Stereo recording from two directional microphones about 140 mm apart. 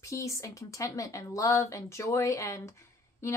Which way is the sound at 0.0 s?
20° left (ahead or behind).